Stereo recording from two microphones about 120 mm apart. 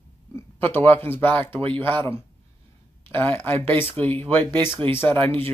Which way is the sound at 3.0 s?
15° left (ahead or behind).